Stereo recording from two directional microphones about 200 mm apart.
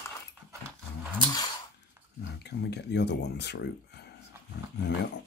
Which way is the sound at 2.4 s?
55° left (ahead or behind).